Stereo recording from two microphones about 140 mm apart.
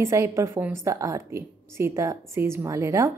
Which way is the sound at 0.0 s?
20° right (ahead or behind).